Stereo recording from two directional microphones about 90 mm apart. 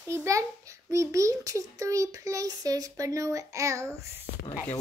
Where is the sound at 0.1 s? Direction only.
35° right (ahead or behind).